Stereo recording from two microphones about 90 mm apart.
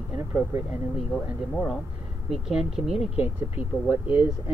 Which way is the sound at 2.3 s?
5° right (ahead or behind).